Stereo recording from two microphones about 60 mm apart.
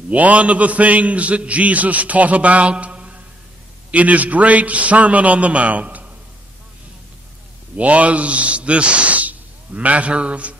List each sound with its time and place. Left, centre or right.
0.1 s a man's voice: right
7.7 s speech: right